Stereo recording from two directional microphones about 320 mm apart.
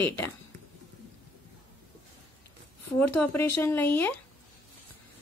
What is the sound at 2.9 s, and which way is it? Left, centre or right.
A woman's voice, centre.